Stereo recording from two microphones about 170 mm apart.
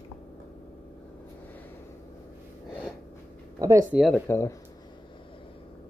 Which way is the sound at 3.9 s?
Centre (ahead or behind).